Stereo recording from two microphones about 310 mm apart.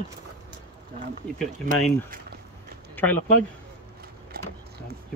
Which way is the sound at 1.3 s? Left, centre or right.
Centre.